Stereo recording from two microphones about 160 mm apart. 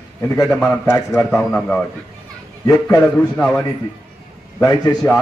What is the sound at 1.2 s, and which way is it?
Speech, centre (ahead or behind).